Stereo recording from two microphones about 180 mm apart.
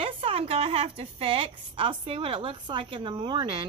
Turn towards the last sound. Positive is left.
turn(degrees=-25)  # may be behind; listen again after turning